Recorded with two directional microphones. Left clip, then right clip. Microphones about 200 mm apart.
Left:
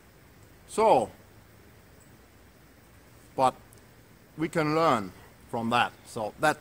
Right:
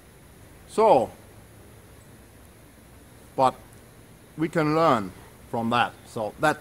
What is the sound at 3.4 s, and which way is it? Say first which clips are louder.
A man's voice: right 3 dB; 15° left (ahead or behind).